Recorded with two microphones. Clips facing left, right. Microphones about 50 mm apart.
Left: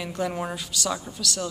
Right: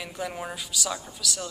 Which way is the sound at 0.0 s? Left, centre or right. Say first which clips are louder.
Left 5 dB; centre.